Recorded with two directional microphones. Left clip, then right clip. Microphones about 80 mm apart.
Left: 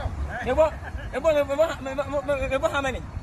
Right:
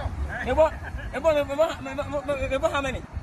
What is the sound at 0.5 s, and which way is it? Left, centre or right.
A man's voice, left.